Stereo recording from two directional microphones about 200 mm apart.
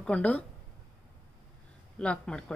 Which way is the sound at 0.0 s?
5° left (ahead or behind).